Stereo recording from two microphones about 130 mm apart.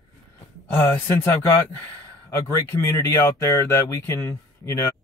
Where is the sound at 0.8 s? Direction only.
15° left (ahead or behind).